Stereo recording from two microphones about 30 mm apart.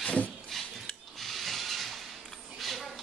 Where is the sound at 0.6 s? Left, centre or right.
Centre.